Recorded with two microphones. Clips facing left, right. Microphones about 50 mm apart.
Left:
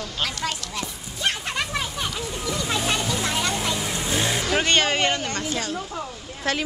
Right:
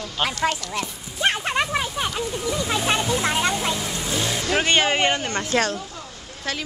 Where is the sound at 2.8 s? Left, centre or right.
Centre.